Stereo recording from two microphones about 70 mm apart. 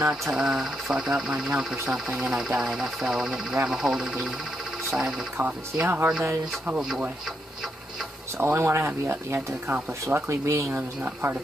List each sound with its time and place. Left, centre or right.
0.1 s speech: centre
5.0 s speech: right
8.4 s speech: right